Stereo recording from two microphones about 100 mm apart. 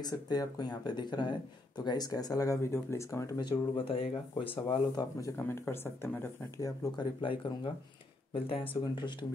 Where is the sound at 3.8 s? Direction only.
75° left (ahead or behind).